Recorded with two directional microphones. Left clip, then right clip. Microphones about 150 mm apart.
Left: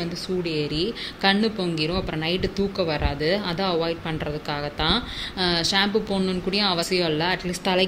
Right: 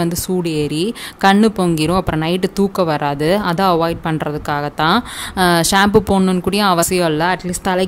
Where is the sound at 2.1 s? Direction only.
55° right (ahead or behind).